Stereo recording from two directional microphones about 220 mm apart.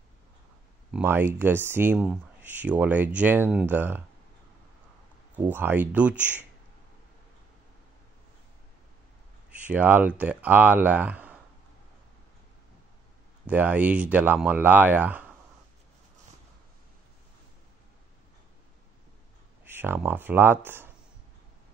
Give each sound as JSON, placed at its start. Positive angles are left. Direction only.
{"t": 0.9, "sound": "speech", "side_deg": -10}
{"t": 5.3, "sound": "speech", "side_deg": -10}
{"t": 9.5, "sound": "speech", "side_deg": -5}
{"t": 13.5, "sound": "speech", "side_deg": -5}
{"t": 19.6, "sound": "speech", "side_deg": -10}